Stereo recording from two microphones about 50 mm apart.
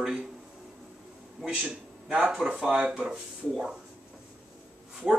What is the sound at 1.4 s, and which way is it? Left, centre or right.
Speech, right.